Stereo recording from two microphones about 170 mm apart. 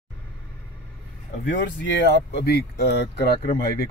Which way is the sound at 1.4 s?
90° left.